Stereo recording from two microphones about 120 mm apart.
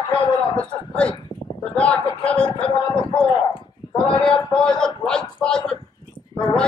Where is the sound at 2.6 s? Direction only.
45° left (ahead or behind).